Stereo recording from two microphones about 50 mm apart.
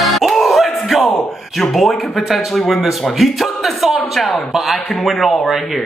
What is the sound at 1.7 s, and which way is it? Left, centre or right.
A man's voice, centre.